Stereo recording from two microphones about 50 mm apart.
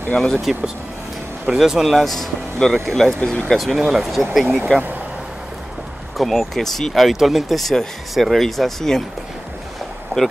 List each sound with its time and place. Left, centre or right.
0.5 s speech: centre
3.2 s speech: left
3.4 s speech: centre
6.1 s speech: centre
10.1 s speech: right